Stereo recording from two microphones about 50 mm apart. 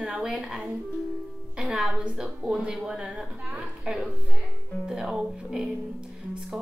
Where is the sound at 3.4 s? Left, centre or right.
Right.